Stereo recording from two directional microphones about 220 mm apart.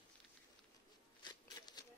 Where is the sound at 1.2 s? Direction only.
20° left (ahead or behind).